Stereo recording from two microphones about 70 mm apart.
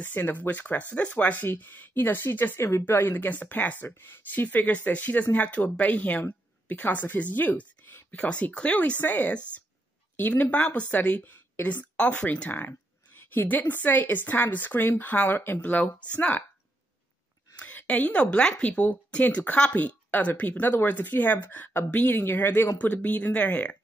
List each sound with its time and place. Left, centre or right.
0.0 s speech: left
17.6 s speech: left